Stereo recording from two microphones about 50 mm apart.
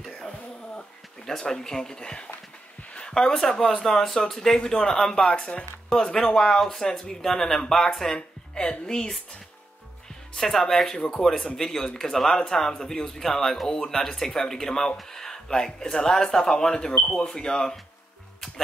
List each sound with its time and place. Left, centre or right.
1.2 s speech: centre
10.3 s speech: centre